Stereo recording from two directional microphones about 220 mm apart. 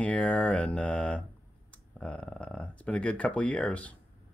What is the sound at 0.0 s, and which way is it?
Speech, 5° left (ahead or behind).